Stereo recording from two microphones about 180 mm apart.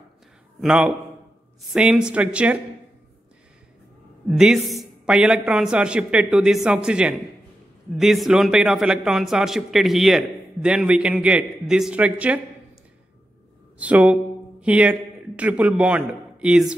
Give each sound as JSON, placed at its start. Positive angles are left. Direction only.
{"t": 0.6, "sound": "a man's voice", "side_deg": -5}
{"t": 4.3, "sound": "a man's voice", "side_deg": -5}
{"t": 13.7, "sound": "a man's voice", "side_deg": -10}